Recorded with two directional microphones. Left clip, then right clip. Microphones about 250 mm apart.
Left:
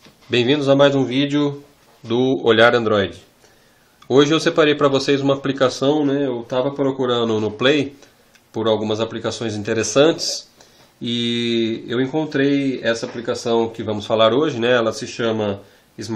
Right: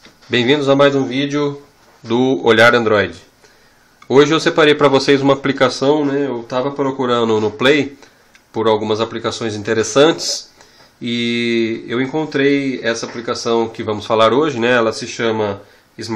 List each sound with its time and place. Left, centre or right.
0.3 s speech: centre
1.2 s speech: centre
2.0 s speech: centre
4.1 s speech: centre